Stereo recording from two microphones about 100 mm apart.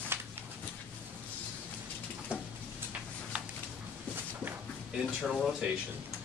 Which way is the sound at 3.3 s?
10° right (ahead or behind).